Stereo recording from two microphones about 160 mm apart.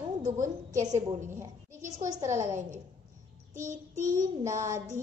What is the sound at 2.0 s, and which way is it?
Speech, 25° right (ahead or behind).